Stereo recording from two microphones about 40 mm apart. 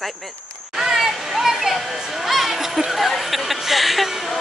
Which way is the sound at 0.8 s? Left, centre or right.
Centre.